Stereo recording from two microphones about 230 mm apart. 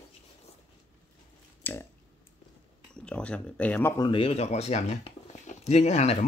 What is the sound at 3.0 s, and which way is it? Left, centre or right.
Speech, centre.